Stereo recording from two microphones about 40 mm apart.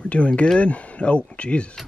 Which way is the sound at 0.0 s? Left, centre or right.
Left.